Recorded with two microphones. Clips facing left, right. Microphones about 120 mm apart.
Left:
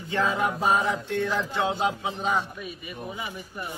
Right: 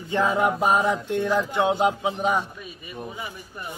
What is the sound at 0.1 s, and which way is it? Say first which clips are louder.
Speech: right 4 dB; 15° right (ahead or behind).